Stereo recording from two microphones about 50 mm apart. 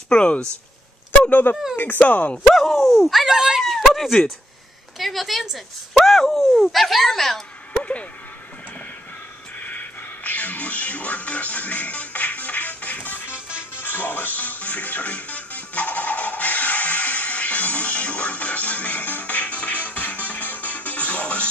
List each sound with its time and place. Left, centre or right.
0.1 s speech: centre
1.3 s speech: left
2.4 s speech: centre
3.7 s a sound: centre
4.9 s speech: centre
9.6 s music: left